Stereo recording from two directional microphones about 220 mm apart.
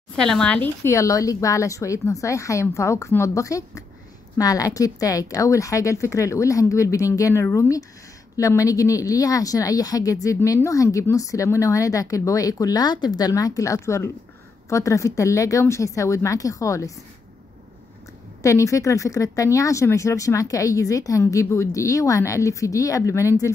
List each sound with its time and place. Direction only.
0.1 s speech: 5° left (ahead or behind)
18.4 s speech: 15° left (ahead or behind)